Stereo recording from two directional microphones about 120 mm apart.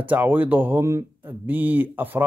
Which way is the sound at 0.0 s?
15° right (ahead or behind).